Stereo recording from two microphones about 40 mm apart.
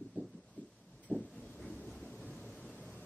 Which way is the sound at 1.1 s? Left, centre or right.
Right.